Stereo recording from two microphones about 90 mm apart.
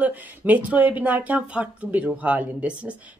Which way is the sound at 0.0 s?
20° right (ahead or behind).